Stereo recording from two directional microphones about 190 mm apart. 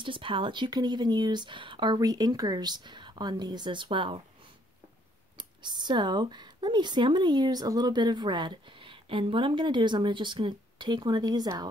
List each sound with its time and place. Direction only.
0.0 s speech: 25° right (ahead or behind)
5.4 s speech: 25° right (ahead or behind)